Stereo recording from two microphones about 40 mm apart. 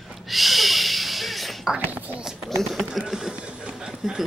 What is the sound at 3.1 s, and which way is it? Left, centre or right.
Mechanisms, centre.